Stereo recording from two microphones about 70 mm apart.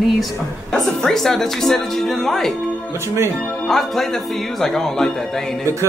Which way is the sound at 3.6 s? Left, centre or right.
Centre.